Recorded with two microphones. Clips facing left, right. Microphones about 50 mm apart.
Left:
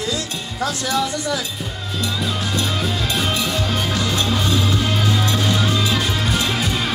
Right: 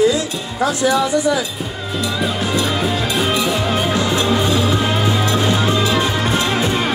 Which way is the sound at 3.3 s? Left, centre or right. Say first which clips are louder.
Right 4 dB; right.